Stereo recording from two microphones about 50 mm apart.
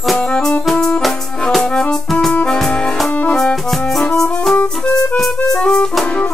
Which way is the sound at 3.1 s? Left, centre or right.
Left.